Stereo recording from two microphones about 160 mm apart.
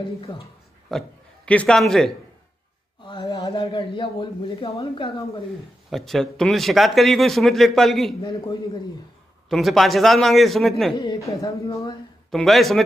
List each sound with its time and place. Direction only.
0.8 s a man's voice: 5° left (ahead or behind)
3.1 s speech: 25° left (ahead or behind)
5.9 s a man's voice: centre (ahead or behind)
8.2 s speech: 30° left (ahead or behind)
9.5 s a man's voice: centre (ahead or behind)
11.0 s speech: 25° left (ahead or behind)
12.3 s a man's voice: centre (ahead or behind)